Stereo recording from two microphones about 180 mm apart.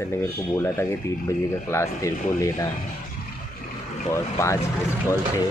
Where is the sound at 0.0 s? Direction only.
15° left (ahead or behind).